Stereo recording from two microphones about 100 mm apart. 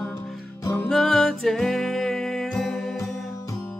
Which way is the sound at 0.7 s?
5° left (ahead or behind).